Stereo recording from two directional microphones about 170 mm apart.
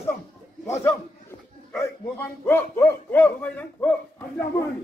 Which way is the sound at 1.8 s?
10° left (ahead or behind).